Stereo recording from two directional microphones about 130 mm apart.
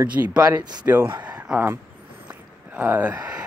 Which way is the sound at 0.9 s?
15° right (ahead or behind).